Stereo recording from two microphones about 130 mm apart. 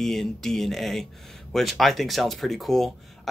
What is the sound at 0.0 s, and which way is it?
Speech, 5° left (ahead or behind).